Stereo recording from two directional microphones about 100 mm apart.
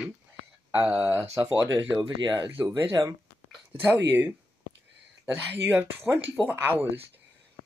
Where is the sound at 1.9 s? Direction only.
40° right (ahead or behind).